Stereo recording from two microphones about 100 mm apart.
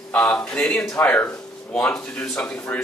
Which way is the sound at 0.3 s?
15° left (ahead or behind).